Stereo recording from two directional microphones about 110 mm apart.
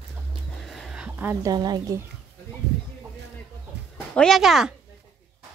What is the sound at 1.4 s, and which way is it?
Speech, 35° right (ahead or behind).